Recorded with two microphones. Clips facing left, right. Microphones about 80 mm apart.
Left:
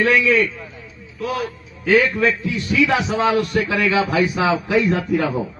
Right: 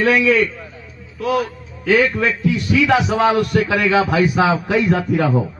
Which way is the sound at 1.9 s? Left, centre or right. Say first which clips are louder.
Even; right.